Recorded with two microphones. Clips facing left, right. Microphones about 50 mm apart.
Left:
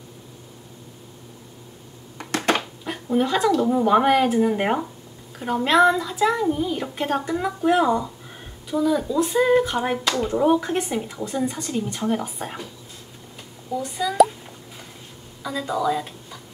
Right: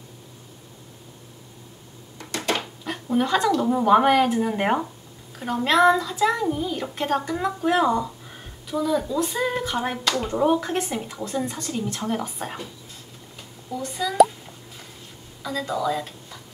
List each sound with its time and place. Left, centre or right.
2.1 s a sound: left
2.8 s a woman's voice: centre
13.7 s a woman's voice: centre
15.4 s speech: centre